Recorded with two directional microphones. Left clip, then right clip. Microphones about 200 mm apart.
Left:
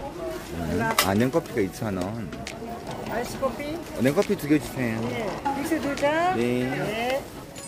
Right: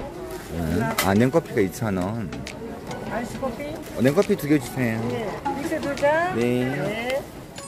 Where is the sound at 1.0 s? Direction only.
25° right (ahead or behind).